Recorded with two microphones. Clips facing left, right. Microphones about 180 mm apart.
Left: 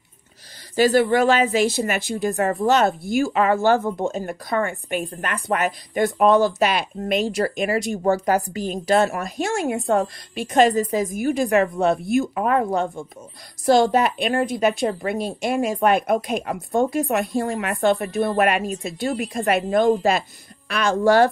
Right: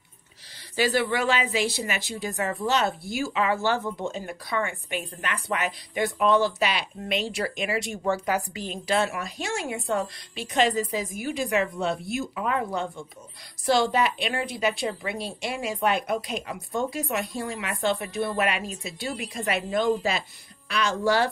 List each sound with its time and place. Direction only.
0.7 s speech: 45° left (ahead or behind)